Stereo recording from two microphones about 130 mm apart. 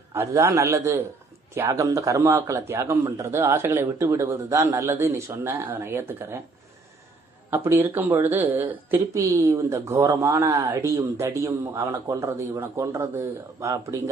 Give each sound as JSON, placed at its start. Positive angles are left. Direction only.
{"t": 0.1, "sound": "a man's voice", "side_deg": -20}
{"t": 7.5, "sound": "a woman's voice", "side_deg": -15}